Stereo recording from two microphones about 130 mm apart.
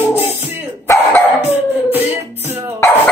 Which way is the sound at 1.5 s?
15° right (ahead or behind).